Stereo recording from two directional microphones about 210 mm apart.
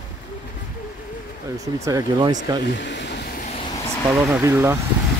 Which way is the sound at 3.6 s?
20° left (ahead or behind).